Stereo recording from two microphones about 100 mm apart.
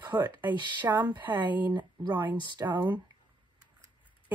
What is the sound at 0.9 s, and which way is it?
Speech, 50° right (ahead or behind).